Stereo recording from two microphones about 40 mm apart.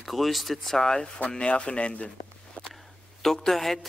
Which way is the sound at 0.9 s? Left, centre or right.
Left.